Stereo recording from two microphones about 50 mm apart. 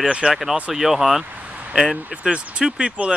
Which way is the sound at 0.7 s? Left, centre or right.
Centre.